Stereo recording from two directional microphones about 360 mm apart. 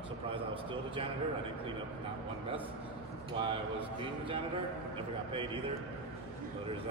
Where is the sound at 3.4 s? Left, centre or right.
Centre.